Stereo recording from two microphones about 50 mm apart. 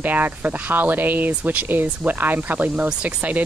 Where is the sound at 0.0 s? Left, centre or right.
Right.